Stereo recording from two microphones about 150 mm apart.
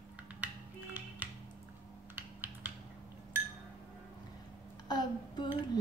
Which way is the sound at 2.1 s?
10° right (ahead or behind).